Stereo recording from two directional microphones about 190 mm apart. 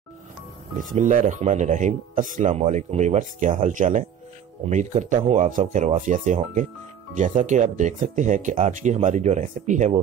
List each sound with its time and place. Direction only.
0.7 s speech: 45° right (ahead or behind)